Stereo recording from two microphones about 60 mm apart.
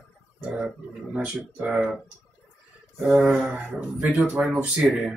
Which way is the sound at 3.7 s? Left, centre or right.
Centre.